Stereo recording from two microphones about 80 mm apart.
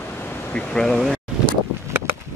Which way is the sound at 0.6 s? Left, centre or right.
Centre.